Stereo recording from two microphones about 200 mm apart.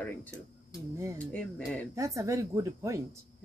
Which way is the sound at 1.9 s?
15° right (ahead or behind).